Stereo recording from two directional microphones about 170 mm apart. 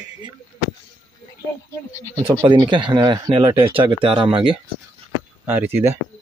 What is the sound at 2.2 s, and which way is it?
Speech, 15° right (ahead or behind).